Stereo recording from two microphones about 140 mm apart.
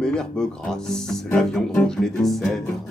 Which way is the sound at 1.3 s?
5° left (ahead or behind).